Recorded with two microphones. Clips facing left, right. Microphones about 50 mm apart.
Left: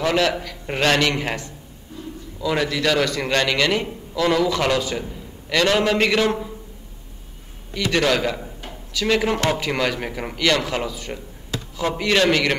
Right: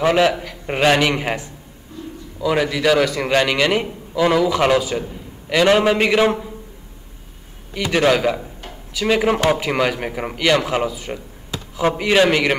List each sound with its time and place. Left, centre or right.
0.0 s a man's voice: centre
7.7 s a man's voice: centre